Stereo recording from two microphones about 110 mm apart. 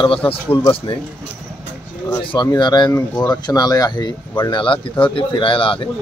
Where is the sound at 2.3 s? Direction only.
40° left (ahead or behind).